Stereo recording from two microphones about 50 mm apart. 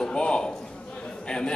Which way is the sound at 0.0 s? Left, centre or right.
Centre.